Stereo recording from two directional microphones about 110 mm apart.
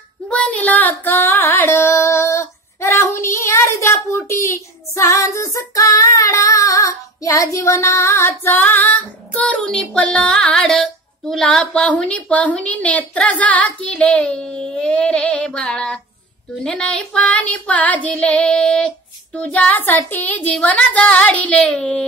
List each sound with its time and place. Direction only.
0.3 s female singing: 10° left (ahead or behind)
16.6 s child singing: 10° left (ahead or behind)